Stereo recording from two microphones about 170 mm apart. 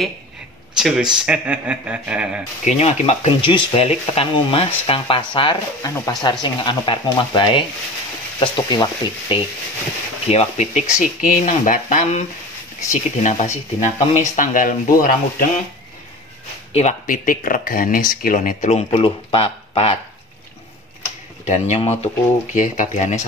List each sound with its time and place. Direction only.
0.7 s speech: centre (ahead or behind)
2.6 s speech: 40° left (ahead or behind)
10.3 s speech: 40° left (ahead or behind); by 15.4 s 55° left (ahead or behind)
17.0 s speech: 55° left (ahead or behind); by 20.0 s 35° left (ahead or behind)
21.5 s speech: 40° left (ahead or behind)